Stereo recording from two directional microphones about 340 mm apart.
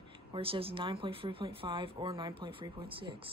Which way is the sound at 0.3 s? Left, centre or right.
Centre.